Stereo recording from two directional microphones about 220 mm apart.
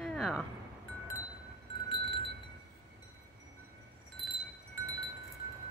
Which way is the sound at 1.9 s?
25° left (ahead or behind).